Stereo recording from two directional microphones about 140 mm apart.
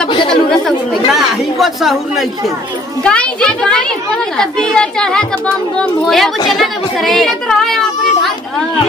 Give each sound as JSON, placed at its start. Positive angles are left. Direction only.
{"t": 0.3, "sound": "a child's voice", "side_deg": 5}